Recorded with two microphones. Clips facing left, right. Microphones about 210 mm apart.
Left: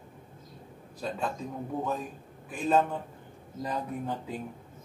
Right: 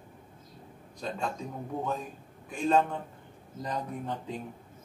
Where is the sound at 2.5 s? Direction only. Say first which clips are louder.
Even; 5° left (ahead or behind).